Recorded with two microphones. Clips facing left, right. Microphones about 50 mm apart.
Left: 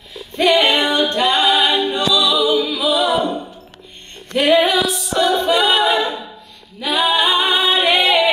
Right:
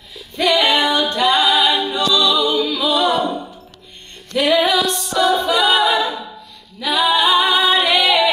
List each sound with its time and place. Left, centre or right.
0.4 s a capella: left
2.1 s music: centre
4.3 s music: left
4.8 s music: centre
5.3 s a capella: left
6.8 s female singing: left
7.5 s singing: left
7.8 s singing: left